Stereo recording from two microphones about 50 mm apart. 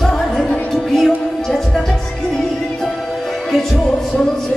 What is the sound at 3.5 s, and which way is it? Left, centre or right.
Music, centre.